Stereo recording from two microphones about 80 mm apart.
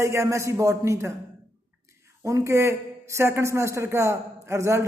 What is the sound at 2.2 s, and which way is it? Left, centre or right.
Speech, right.